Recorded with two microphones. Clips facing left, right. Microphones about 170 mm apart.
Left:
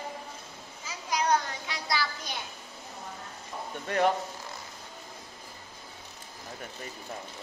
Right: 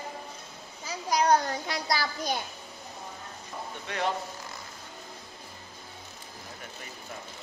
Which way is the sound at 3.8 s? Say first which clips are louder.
Left 6 dB; 45° left (ahead or behind).